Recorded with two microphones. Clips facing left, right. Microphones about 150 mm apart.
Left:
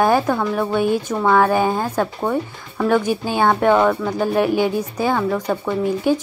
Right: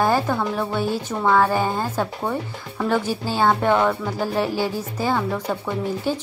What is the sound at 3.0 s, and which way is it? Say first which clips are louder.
Speech: left 2 dB; 15° left (ahead or behind).